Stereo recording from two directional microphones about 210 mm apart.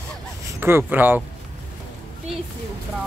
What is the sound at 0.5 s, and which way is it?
Speech, 10° right (ahead or behind).